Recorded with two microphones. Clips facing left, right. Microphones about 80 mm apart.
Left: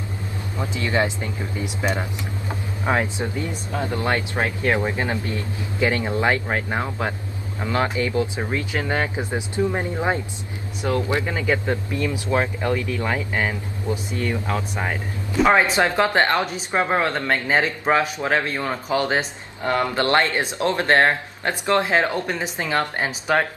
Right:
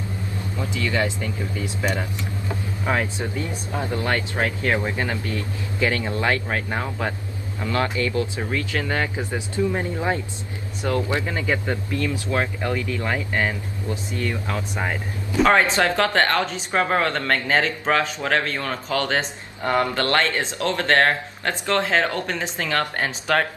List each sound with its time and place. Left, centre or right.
0.6 s a man's voice: left
11.3 s speech: centre
12.5 s speech: centre